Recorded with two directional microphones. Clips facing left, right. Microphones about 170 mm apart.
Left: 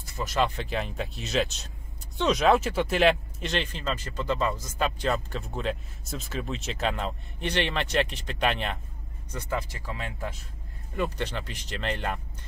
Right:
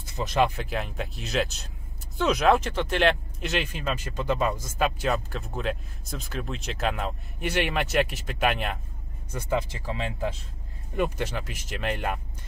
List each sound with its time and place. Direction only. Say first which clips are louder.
0.1 s speech: right 3 dB; 20° right (ahead or behind)
0.6 s speech: even; centre (ahead or behind)
9.3 s speech: right 4 dB; 20° right (ahead or behind)
11.0 s speech: right 2 dB; 10° right (ahead or behind)